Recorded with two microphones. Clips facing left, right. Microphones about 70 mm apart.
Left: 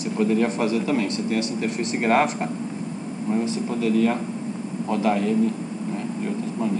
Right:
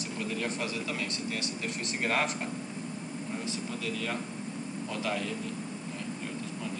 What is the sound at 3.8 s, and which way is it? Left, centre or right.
Speech, left.